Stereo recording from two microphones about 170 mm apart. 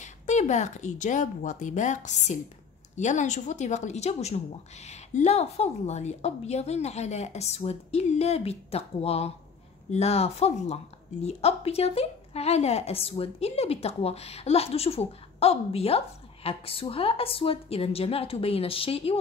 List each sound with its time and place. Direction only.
0.0 s a woman's voice: 45° left (ahead or behind)